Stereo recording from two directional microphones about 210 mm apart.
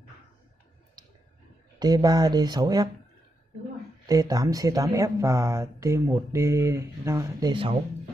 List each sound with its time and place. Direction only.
1.8 s speech: 20° right (ahead or behind)
4.1 s speech: 15° right (ahead or behind)